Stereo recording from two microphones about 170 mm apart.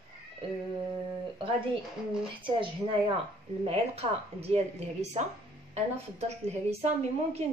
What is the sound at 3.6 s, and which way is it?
Speech, 35° right (ahead or behind).